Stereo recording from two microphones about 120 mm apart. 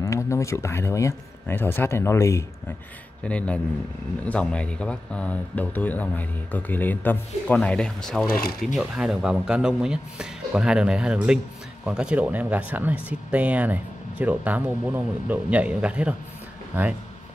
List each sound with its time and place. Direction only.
0.0 s speech: 25° left (ahead or behind)
3.3 s speech: 10° left (ahead or behind); by 16.9 s 15° right (ahead or behind)